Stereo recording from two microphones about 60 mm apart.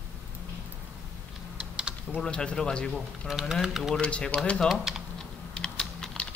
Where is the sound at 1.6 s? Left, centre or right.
Centre.